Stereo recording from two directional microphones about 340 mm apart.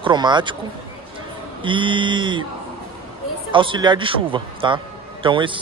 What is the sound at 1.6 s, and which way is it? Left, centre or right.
Speech, centre.